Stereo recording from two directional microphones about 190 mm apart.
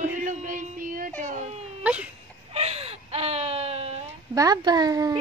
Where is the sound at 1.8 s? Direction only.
5° right (ahead or behind).